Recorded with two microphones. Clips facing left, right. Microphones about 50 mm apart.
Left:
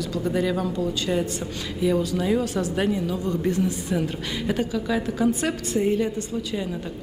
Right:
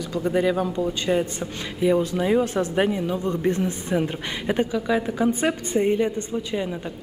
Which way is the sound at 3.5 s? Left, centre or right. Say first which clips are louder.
Even; right.